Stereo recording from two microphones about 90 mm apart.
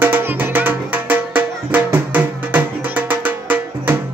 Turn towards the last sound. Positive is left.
turn(degrees=-20)  # may be behind; listen again after turning